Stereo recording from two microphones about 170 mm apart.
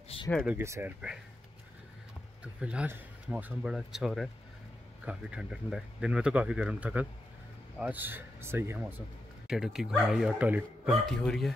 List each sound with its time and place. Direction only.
0.1 s a sound: 35° left (ahead or behind)
0.5 s speech: 15° right (ahead or behind)
2.4 s speech: 5° right (ahead or behind)
9.5 s speech: 5° right (ahead or behind)